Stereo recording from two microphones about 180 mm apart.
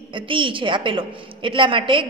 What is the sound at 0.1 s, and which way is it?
A woman's voice, 30° right (ahead or behind).